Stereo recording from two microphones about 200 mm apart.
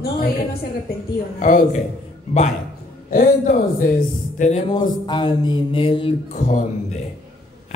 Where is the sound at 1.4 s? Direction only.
40° left (ahead or behind).